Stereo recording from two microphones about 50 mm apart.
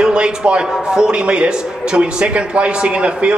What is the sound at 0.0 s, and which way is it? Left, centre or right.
A man's voice, centre.